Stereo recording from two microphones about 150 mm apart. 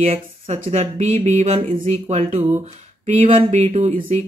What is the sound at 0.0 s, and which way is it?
Speech, 45° right (ahead or behind).